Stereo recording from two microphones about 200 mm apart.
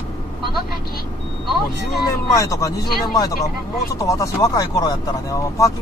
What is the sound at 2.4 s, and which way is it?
Speech, 15° left (ahead or behind).